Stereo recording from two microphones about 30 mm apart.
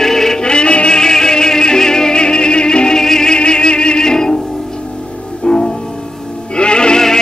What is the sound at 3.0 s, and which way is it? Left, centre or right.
Music, centre.